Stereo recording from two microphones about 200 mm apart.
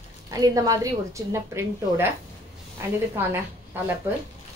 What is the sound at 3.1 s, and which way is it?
A woman's voice, 10° right (ahead or behind).